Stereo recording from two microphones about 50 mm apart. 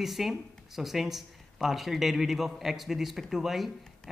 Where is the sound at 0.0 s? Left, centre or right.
Centre.